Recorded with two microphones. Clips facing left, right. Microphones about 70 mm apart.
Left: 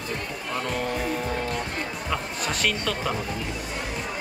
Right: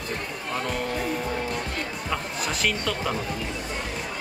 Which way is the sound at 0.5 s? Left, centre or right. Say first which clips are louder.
Even; centre.